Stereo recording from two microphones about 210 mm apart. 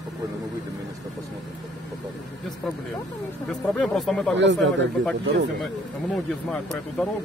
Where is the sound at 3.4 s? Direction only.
Centre (ahead or behind).